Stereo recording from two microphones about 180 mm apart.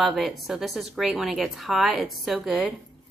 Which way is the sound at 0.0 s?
Centre (ahead or behind).